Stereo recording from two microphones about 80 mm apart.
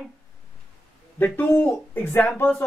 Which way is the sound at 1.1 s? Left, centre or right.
Left.